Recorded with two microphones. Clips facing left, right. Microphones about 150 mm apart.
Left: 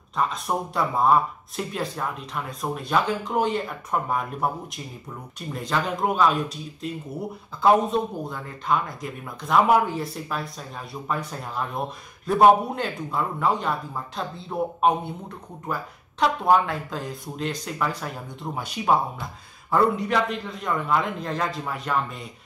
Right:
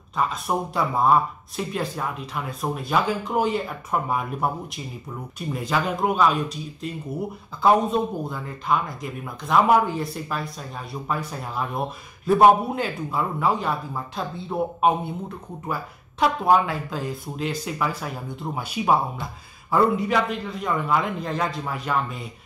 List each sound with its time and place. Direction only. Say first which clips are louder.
0.1 s speech: right 1 dB; centre (ahead or behind)
5.5 s speech: right 2 dB; 5° right (ahead or behind)